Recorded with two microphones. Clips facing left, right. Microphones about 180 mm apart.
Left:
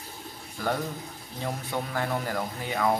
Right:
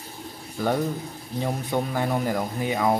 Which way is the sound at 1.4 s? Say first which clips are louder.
Right 6 dB; 20° right (ahead or behind).